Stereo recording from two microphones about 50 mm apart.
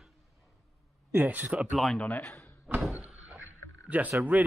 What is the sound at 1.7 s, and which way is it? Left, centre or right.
Speech, centre.